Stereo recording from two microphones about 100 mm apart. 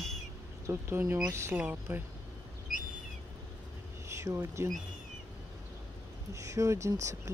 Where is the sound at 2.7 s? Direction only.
Centre (ahead or behind).